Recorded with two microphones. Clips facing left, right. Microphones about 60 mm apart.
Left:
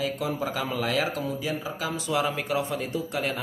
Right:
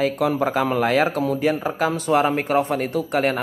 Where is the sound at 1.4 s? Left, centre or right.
Right.